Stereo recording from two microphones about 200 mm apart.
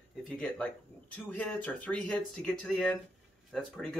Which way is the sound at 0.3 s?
5° left (ahead or behind).